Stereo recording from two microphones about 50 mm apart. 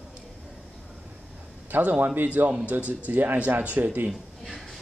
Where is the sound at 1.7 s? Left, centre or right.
Right.